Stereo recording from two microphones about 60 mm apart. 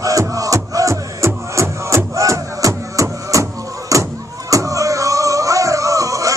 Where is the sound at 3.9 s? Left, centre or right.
Right.